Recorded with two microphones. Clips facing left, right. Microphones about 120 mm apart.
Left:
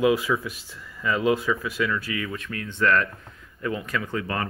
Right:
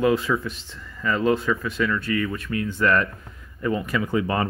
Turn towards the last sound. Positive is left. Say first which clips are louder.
# right 5 dB
turn(degrees=-20)  # may be behind; listen again after turning